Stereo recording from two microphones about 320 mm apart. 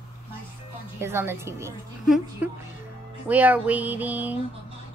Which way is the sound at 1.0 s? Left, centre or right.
Centre.